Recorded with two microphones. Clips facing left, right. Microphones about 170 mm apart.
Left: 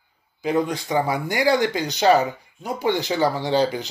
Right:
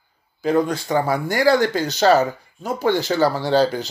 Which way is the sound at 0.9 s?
15° left (ahead or behind).